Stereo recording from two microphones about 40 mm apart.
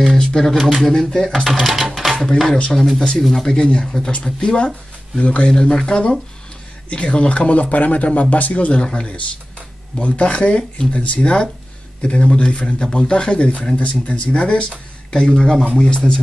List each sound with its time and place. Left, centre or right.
0.2 s speech: centre
0.6 s speech: centre
0.9 s speech: centre
1.3 s speech: centre
3.0 s speech: centre; by 11.1 s left
11.1 s speech: left